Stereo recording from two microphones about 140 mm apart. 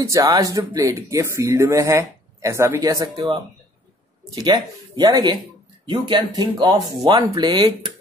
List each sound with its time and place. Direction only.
0.0 s speech: 25° right (ahead or behind)
4.4 s speech: 30° right (ahead or behind)